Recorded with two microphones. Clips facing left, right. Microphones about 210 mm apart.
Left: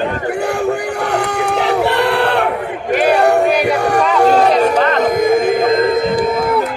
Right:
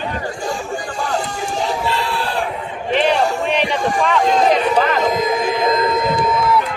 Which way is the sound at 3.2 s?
65° left (ahead or behind).